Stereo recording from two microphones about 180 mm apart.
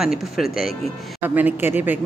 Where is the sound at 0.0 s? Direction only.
5° right (ahead or behind).